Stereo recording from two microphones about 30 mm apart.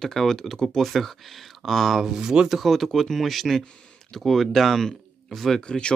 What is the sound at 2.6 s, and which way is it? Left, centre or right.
Speech, centre.